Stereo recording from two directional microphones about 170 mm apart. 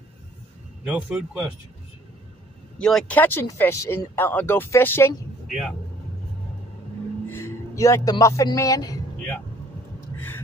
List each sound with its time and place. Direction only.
0.8 s speech: 10° right (ahead or behind)
2.8 s speech: 5° left (ahead or behind)
5.5 s speech: centre (ahead or behind)
7.2 s a man's voice: 15° left (ahead or behind)